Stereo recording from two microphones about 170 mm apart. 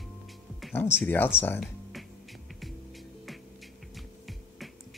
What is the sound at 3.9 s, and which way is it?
Music, centre (ahead or behind).